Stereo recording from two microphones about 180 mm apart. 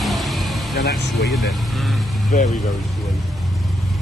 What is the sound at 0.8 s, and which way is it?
Speech, 70° left (ahead or behind).